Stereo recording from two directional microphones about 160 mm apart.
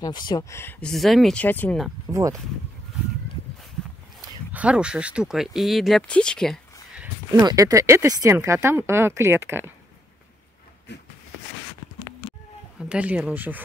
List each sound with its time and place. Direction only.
0.0 s speech: 25° left (ahead or behind); by 1.8 s 10° left (ahead or behind)
2.1 s speech: 5° right (ahead or behind)
4.5 s speech: 10° right (ahead or behind)
7.3 s speech: 25° right (ahead or behind)
12.7 s speech: 5° right (ahead or behind)